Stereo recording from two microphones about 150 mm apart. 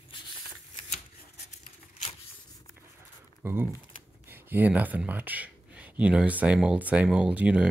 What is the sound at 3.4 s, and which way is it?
Speech, 15° right (ahead or behind).